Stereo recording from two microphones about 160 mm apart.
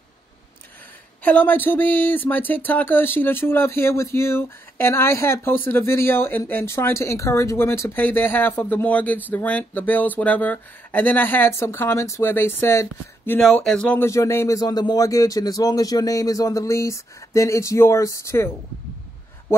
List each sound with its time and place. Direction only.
1.2 s a man's voice: 10° left (ahead or behind)